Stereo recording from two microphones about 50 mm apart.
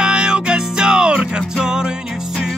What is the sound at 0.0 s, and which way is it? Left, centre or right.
Music, centre.